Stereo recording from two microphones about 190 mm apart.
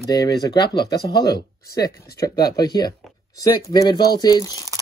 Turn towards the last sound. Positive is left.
turn(degrees=15)  # may be behind; listen again after turning